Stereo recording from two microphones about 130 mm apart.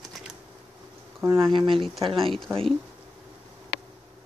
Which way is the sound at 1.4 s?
40° right (ahead or behind).